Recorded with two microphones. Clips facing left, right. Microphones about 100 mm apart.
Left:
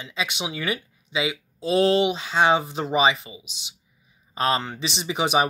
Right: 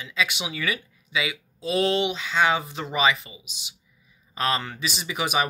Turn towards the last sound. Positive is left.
turn(degrees=25)  # may be behind; listen again after turning